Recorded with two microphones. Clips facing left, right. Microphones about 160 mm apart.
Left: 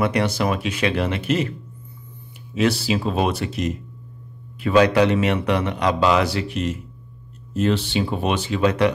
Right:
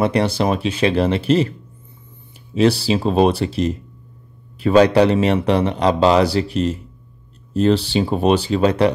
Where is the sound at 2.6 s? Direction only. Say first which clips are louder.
Right 4 dB; 30° right (ahead or behind).